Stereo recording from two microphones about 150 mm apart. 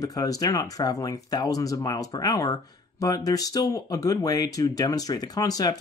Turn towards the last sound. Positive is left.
turn(degrees=25)  # may be behind; listen again after turning